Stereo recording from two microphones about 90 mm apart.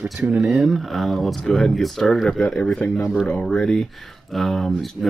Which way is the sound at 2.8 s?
20° left (ahead or behind).